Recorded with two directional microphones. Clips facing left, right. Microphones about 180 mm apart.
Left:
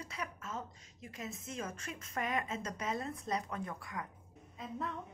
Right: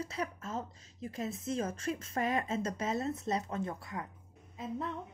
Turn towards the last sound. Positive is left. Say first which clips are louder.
# right 3 dB
turn(degrees=-30)  # may be behind; listen again after turning